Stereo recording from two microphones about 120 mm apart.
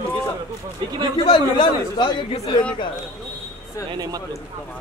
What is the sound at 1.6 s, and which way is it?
Speech, 40° left (ahead or behind).